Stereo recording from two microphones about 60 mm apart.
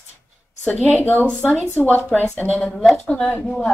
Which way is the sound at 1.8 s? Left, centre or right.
Left.